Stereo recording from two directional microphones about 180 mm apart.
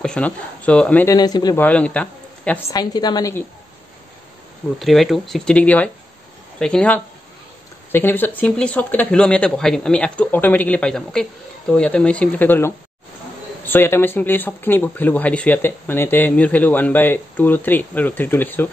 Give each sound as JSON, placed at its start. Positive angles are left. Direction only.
{"t": 0.0, "sound": "speech", "side_deg": 5}
{"t": 1.1, "sound": "a woman's voice", "side_deg": 20}
{"t": 1.6, "sound": "speech", "side_deg": 5}
{"t": 2.7, "sound": "a woman's voice", "side_deg": 20}
{"t": 4.7, "sound": "speech", "side_deg": 0}